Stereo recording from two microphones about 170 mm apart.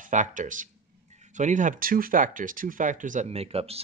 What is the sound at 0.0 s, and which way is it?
Speech, 50° right (ahead or behind).